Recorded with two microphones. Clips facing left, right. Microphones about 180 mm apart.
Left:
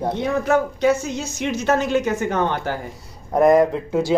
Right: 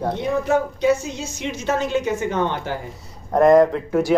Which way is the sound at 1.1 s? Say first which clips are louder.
Left 4 dB; 40° left (ahead or behind).